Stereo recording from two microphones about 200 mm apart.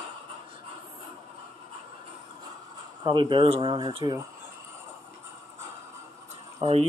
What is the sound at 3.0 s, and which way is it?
Speech, 20° right (ahead or behind).